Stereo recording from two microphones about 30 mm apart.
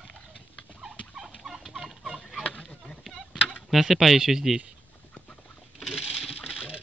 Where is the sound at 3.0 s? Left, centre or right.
Centre.